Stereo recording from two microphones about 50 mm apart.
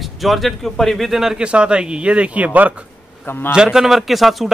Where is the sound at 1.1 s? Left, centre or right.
Centre.